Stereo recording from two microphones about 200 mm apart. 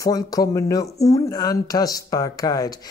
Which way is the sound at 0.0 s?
15° left (ahead or behind).